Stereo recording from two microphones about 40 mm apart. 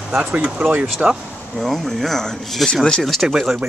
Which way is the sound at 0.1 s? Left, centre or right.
Right.